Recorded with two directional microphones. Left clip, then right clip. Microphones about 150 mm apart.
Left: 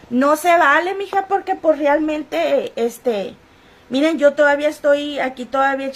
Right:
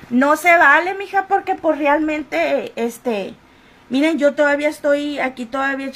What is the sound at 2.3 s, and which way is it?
A woman's voice, 10° left (ahead or behind).